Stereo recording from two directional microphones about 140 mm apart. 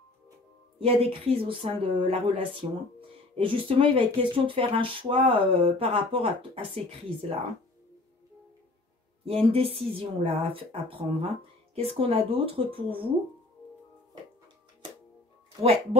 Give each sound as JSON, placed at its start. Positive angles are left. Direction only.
{"t": 0.7, "sound": "a woman's voice", "side_deg": -45}
{"t": 9.2, "sound": "a woman's voice", "side_deg": -45}
{"t": 15.6, "sound": "a woman's voice", "side_deg": -50}